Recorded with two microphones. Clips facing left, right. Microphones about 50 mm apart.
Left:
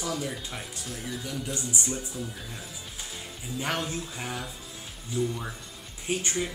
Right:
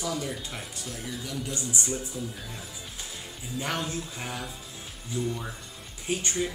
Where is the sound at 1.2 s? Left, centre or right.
Centre.